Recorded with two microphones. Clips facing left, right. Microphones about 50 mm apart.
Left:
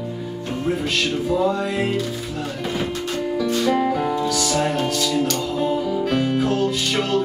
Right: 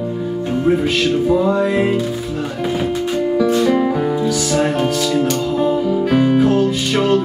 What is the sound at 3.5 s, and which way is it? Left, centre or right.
Music, centre.